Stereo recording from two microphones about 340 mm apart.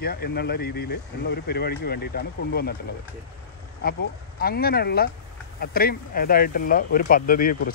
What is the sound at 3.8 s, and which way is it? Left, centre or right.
Speech, left.